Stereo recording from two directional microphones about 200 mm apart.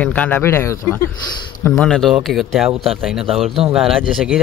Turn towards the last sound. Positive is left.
turn(degrees=0)  # may be behind; listen again after turning